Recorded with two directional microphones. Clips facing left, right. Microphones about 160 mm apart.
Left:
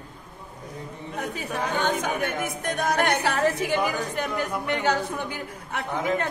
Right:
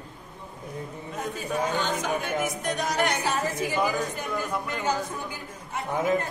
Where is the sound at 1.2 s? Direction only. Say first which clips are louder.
Right 1 dB; 60° left (ahead or behind).